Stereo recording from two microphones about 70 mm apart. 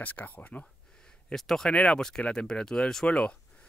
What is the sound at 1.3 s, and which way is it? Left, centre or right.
Speech, centre.